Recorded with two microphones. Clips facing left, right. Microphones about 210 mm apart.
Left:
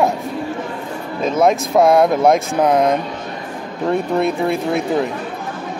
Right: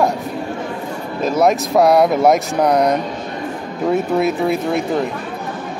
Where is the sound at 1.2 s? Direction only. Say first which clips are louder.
Even; centre (ahead or behind).